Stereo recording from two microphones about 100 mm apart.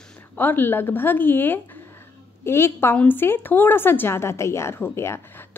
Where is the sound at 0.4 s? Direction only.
20° left (ahead or behind).